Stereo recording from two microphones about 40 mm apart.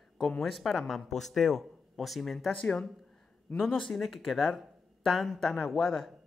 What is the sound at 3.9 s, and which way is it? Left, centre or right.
Speech, centre.